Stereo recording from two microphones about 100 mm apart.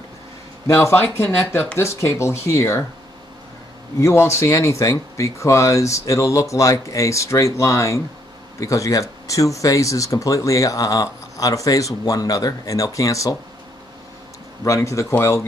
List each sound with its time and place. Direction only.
0.7 s speech: 30° left (ahead or behind)
4.0 s speech: 25° left (ahead or behind)
14.6 s speech: 30° left (ahead or behind)